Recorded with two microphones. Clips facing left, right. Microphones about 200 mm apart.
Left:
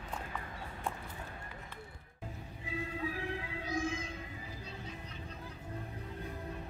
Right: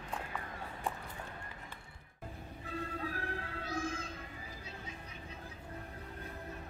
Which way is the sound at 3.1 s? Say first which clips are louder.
Left 2 dB; 15° left (ahead or behind).